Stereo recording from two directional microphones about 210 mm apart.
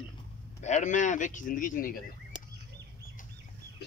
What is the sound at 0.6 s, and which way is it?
Speech, 35° left (ahead or behind).